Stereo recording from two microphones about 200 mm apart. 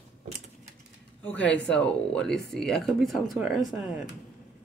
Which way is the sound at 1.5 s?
5° left (ahead or behind).